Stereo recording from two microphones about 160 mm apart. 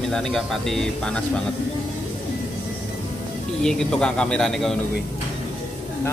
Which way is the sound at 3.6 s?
5° left (ahead or behind).